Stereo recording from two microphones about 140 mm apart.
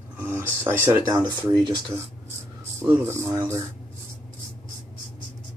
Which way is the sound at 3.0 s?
20° right (ahead or behind).